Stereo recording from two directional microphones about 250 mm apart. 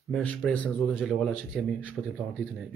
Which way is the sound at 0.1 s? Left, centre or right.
Centre.